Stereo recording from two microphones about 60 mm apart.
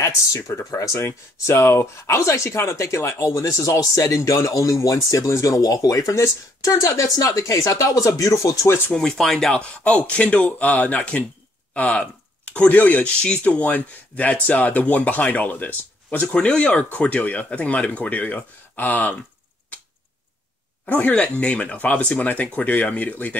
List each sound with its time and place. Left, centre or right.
0.0 s speech: left
0.9 s speech: left
3.3 s speech: left
8.6 s speech: left
8.9 s speech: centre
9.6 s speech: left
16.3 s speech: centre
21.1 s speech: centre